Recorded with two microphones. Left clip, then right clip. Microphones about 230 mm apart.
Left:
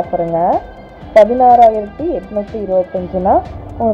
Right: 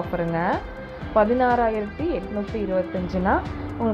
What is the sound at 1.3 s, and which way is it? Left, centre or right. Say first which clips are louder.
Speech: left 13 dB; centre.